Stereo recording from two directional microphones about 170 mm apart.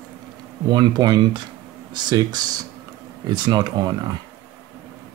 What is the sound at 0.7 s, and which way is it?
Speech, 25° right (ahead or behind).